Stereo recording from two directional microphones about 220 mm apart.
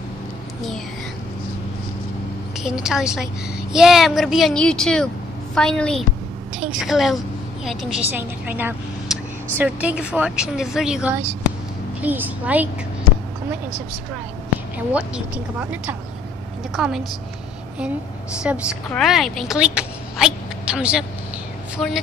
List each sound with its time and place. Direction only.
2.6 s a woman's voice: centre (ahead or behind)
14.9 s speech: 5° right (ahead or behind)
18.4 s speech: 5° right (ahead or behind)